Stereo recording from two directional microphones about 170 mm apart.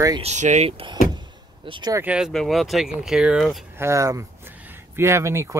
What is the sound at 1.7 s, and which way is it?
Speech, 25° right (ahead or behind).